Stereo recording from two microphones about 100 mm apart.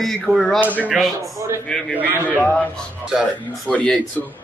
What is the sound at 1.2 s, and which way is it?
Speech, 30° right (ahead or behind).